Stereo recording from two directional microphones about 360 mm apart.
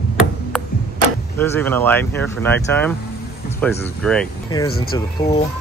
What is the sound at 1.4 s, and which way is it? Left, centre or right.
Speech, centre.